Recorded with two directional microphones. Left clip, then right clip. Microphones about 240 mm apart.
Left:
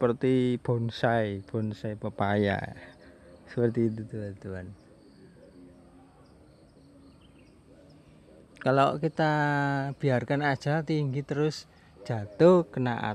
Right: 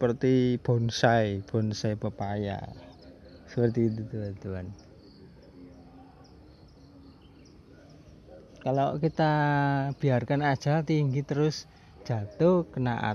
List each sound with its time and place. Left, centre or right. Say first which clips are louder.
0.0 s speech: even; centre
2.1 s speech: left 6 dB; left
3.5 s speech: even; centre
8.6 s speech: left 4 dB; centre
8.9 s speech: right 1 dB; centre